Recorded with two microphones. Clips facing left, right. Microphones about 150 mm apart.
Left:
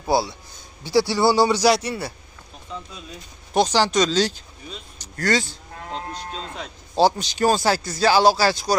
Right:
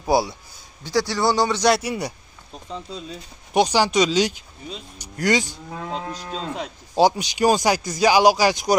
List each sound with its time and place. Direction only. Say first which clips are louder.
0.0 s speech: right 1 dB; 15° right (ahead or behind)
0.8 s speech: left 3 dB; 10° left (ahead or behind)
1.8 s speech: right 2 dB; 15° right (ahead or behind)
3.5 s speech: right 1 dB; 10° right (ahead or behind)
6.0 s moo: right 1 dB; 90° right
6.6 s speech: even; 15° right (ahead or behind)